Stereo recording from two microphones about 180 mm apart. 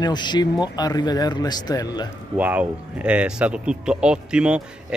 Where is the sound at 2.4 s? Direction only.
10° right (ahead or behind).